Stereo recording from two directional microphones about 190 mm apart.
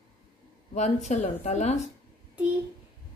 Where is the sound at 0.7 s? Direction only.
35° left (ahead or behind).